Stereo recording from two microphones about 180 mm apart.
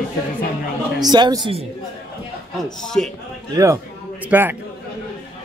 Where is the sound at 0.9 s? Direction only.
25° right (ahead or behind).